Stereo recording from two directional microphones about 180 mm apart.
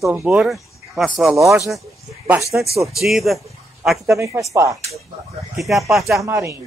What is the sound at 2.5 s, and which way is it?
Speech, 10° right (ahead or behind).